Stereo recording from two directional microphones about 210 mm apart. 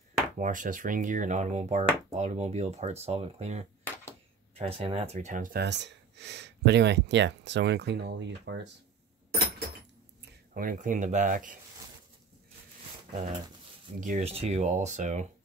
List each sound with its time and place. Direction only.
0.4 s speech: 40° right (ahead or behind); by 8.5 s 55° right (ahead or behind)
10.5 s speech: 40° right (ahead or behind)
13.1 s speech: 35° right (ahead or behind)